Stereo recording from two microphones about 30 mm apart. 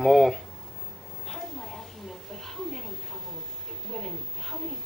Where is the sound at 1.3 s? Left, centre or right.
Centre.